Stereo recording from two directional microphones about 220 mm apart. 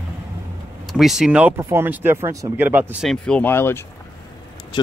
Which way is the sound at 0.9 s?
Centre (ahead or behind).